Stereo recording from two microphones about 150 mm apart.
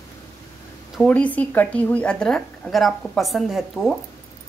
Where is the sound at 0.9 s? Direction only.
10° left (ahead or behind).